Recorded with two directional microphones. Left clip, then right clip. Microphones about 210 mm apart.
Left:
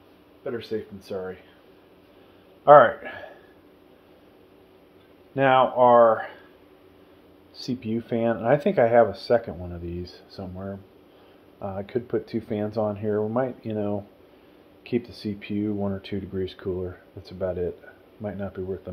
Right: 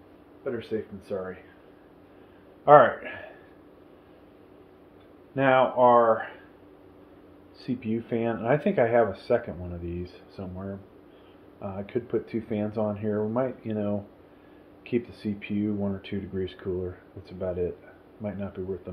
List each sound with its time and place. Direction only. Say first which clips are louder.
0.4 s speech: left 1 dB; 55° left (ahead or behind)
2.6 s speech: left 3 dB; 45° left (ahead or behind)
5.3 s speech: left 2 dB; 45° left (ahead or behind)
7.6 s speech: left 1 dB; 45° left (ahead or behind)